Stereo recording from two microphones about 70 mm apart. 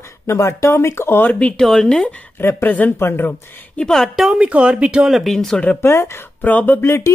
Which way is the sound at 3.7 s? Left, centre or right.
Centre.